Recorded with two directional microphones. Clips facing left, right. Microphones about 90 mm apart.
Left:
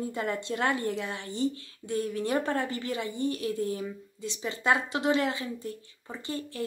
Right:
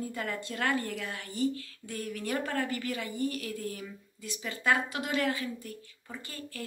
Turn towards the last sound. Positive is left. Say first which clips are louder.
# left 7 dB
turn(degrees=25)  # may be behind; listen again after turning